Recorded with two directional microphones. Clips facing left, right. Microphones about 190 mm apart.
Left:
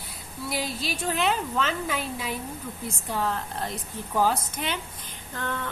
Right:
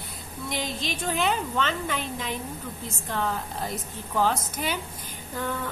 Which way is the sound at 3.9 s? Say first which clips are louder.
Left 1 dB; 10° left (ahead or behind).